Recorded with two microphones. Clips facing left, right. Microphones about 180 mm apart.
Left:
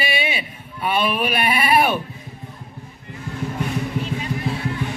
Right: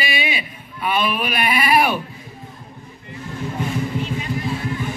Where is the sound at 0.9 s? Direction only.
30° left (ahead or behind).